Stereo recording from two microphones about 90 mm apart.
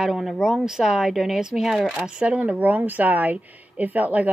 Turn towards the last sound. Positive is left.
turn(degrees=-15)  # may be behind; listen again after turning